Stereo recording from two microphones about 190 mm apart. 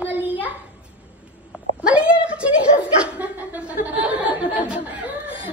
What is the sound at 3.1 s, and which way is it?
A child's voice, 10° right (ahead or behind).